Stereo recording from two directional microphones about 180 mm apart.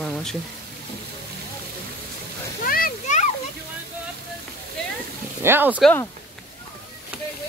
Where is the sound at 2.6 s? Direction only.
55° left (ahead or behind).